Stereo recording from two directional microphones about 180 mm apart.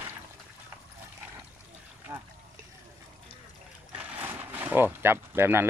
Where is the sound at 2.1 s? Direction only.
20° right (ahead or behind).